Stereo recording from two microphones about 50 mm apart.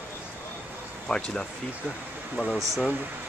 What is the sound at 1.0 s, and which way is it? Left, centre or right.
Speech, centre.